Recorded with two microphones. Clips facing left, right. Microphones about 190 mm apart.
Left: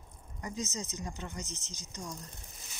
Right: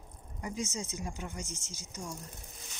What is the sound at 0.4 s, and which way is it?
Speech, 10° right (ahead or behind).